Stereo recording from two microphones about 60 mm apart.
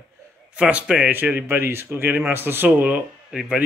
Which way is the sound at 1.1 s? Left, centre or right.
Right.